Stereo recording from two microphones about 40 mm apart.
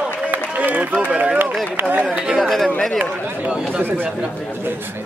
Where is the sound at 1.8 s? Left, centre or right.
Right.